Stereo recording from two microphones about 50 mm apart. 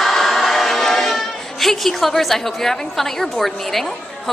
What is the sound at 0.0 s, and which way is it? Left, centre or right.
A woman's voice, centre.